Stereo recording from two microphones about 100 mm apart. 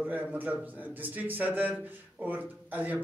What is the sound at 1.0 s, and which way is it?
Speech, 15° right (ahead or behind).